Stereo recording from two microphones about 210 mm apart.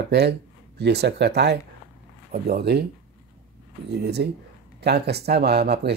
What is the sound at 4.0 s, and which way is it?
Speech, 50° right (ahead or behind).